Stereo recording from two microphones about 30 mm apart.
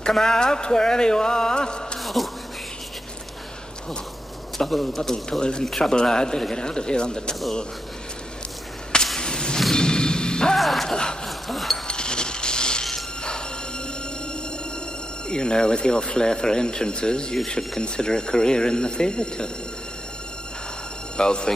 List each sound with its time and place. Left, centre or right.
0.2 s speech: left
2.2 s speech: centre
4.6 s a man's voice: centre
5.4 s speech: left
9.2 s whip: left
9.8 s music: left
10.6 s music: centre
11.2 s a sound: centre
11.9 s a sound: left
15.2 s speech: left
21.2 s speech: left